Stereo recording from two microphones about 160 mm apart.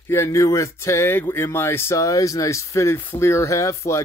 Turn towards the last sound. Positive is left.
turn(degrees=20)  # may be behind; listen again after turning